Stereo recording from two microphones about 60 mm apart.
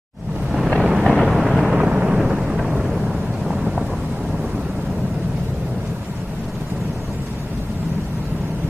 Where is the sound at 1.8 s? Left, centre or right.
Centre.